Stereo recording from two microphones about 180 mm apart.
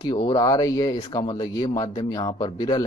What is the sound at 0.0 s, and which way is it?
Speech, 25° left (ahead or behind).